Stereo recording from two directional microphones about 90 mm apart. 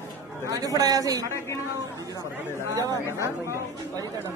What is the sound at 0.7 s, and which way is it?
Speech, 40° right (ahead or behind).